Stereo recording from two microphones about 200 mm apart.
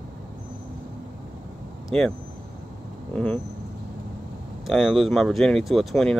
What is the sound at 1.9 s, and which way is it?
Speech, 5° left (ahead or behind).